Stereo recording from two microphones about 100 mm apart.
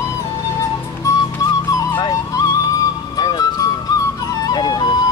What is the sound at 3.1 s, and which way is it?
Music, 40° left (ahead or behind).